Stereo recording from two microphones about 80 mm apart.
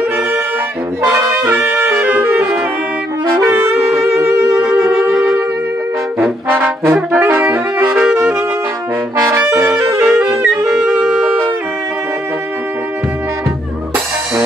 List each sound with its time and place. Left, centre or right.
1.7 s music: right
3.3 s wind instrument: right
3.6 s wind instrument: right
6.5 s brass instrument: right
8.1 s saxophone: right
9.2 s brass instrument: right
10.6 s music: centre